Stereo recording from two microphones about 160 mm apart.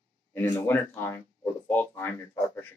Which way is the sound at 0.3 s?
15° left (ahead or behind).